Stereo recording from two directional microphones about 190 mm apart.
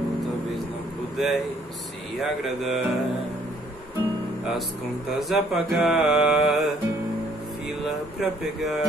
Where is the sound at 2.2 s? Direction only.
Centre (ahead or behind).